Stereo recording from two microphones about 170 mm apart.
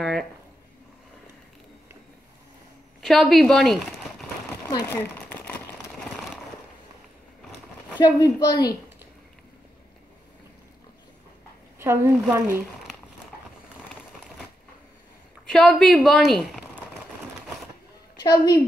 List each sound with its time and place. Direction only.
0.0 s a sound: centre (ahead or behind)
3.0 s speech: centre (ahead or behind)
4.6 s speech: 15° left (ahead or behind)
8.0 s a woman's voice: 25° left (ahead or behind)
11.8 s speech: 15° right (ahead or behind)
15.4 s a woman's voice: centre (ahead or behind)
18.2 s a woman's voice: 25° left (ahead or behind)